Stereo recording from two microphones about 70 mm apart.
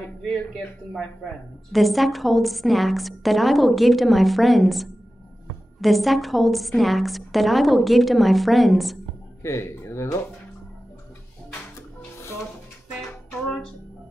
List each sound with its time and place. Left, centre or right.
1.7 s a woman's voice: centre
9.4 s speech: left